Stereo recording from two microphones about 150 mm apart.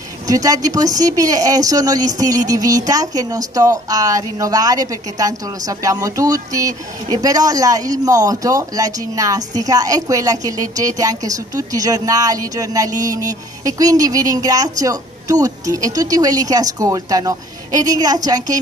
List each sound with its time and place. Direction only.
0.3 s a woman's voice: 25° right (ahead or behind)